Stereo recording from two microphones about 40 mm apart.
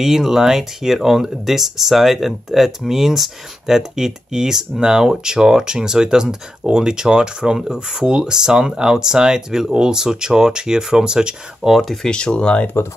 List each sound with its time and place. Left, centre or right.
0.0 s speech: centre
11.6 s speech: centre
12.1 s speech: left